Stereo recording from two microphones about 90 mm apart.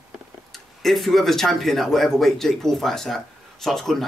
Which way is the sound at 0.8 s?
Centre (ahead or behind).